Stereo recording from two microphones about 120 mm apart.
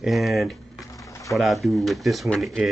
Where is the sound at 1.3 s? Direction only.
Centre (ahead or behind).